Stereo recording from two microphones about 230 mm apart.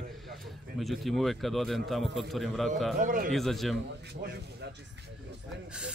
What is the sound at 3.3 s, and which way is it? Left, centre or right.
Speech, centre.